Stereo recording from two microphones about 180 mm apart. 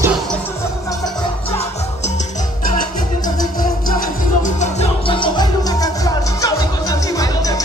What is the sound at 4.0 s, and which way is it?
Music, 45° left (ahead or behind).